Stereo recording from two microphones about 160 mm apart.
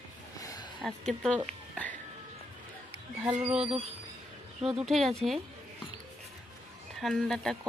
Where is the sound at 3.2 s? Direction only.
5° right (ahead or behind).